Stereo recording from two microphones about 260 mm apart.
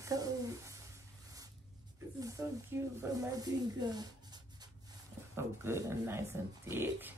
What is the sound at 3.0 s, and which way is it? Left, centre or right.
Speech, centre.